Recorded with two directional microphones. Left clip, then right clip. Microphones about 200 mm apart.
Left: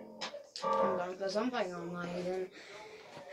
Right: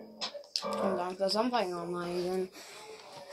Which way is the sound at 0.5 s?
55° right (ahead or behind).